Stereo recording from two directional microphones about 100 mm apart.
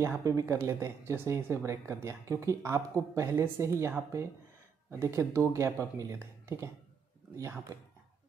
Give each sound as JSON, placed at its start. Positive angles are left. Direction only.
{"t": 0.2, "sound": "speech", "side_deg": -30}
{"t": 4.9, "sound": "speech", "side_deg": -30}